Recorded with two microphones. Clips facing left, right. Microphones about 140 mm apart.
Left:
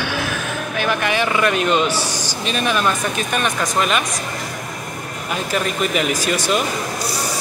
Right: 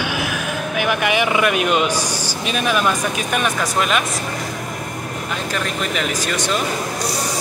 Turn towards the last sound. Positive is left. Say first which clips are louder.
# left 2 dB
turn(degrees=10)  # may be behind; listen again after turning